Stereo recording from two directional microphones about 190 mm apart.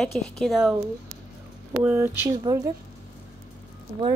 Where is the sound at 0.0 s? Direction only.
Centre (ahead or behind).